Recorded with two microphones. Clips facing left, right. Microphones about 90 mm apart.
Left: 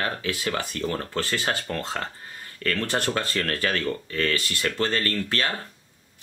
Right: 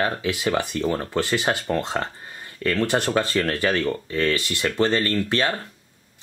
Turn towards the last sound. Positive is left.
turn(degrees=-20)  # may be behind; listen again after turning